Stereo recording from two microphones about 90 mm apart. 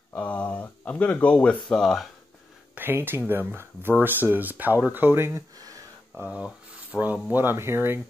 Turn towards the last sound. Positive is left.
turn(degrees=-25)  # may be behind; listen again after turning